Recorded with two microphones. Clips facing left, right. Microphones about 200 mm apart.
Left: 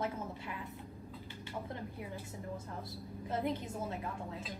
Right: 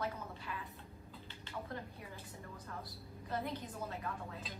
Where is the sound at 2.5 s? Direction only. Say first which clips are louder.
Left 4 dB; 25° left (ahead or behind).